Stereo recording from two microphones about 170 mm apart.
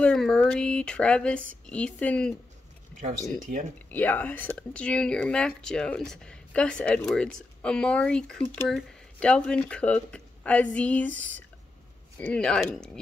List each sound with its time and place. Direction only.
0.0 s speech: 5° left (ahead or behind)
3.5 s speech: 70° right (ahead or behind)
3.9 s speech: 10° left (ahead or behind)